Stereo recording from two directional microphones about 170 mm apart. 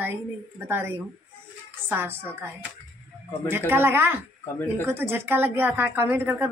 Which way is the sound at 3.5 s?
10° right (ahead or behind).